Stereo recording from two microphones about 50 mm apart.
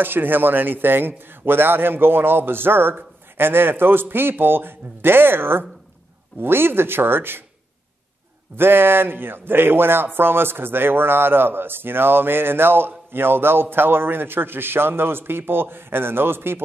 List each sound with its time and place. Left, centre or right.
0.0 s a man's voice: right
8.5 s a man's voice: right